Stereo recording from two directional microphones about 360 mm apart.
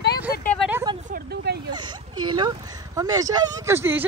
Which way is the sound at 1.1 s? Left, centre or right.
Right.